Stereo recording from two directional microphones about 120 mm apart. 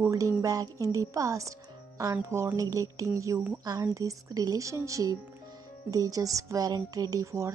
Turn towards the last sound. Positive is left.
turn(degrees=-30)  # may be behind; listen again after turning